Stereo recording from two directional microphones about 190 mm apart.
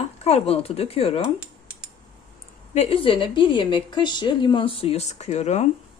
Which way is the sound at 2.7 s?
30° left (ahead or behind).